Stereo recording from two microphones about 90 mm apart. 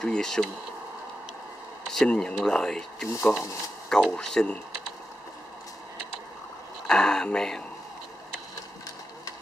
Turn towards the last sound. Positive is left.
turn(degrees=5)  # may be behind; listen again after turning